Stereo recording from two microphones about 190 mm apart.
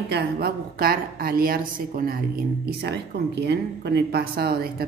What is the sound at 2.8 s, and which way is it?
Speech, 60° right (ahead or behind).